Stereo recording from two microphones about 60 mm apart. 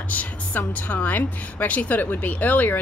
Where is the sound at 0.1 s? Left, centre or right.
Left.